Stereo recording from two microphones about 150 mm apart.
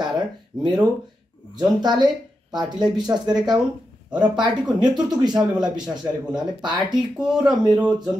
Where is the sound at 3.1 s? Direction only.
30° right (ahead or behind).